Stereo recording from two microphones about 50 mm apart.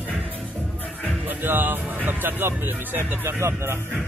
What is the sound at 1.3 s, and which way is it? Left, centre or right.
Speech, right.